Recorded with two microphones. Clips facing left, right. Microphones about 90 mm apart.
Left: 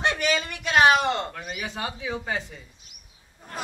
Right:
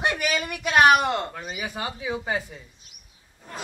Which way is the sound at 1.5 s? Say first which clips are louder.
Right 1 dB; 10° right (ahead or behind).